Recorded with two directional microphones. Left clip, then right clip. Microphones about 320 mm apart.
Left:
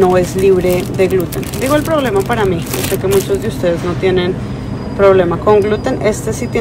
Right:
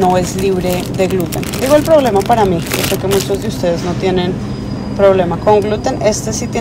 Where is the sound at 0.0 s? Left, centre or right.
Centre.